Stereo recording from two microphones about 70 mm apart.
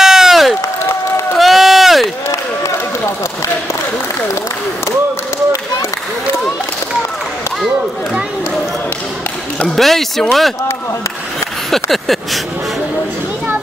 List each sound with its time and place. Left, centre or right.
0.0 s crowd: centre
1.4 s run: centre
9.7 s speech: centre
11.7 s a sound: centre